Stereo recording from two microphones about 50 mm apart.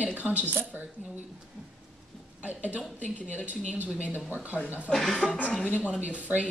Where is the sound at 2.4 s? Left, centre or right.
Right.